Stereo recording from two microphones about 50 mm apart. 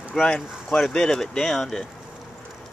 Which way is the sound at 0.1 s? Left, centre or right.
Centre.